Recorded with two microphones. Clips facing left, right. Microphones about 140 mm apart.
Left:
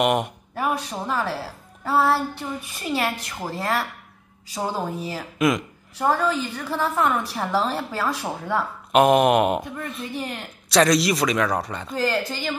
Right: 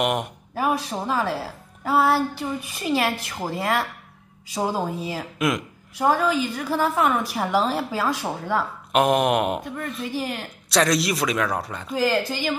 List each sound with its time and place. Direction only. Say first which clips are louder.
0.0 s speech: left 3 dB; centre (ahead or behind)
6.2 s a woman's voice: right 1 dB; 90° right
6.5 s a woman's voice: right 2 dB; 10° right (ahead or behind)